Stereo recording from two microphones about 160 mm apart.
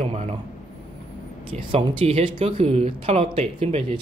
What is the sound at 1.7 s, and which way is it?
Speech, 40° right (ahead or behind).